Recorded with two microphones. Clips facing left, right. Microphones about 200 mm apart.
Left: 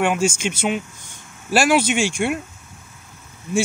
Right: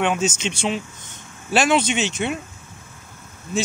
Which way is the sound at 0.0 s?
10° left (ahead or behind).